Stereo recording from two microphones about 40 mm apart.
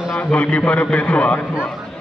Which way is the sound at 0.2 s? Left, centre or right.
Left.